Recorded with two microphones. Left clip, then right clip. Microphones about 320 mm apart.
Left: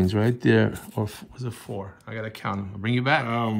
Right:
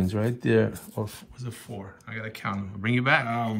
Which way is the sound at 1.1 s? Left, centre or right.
Centre.